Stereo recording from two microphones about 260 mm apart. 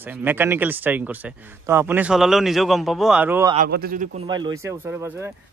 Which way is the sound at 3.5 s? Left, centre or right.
Right.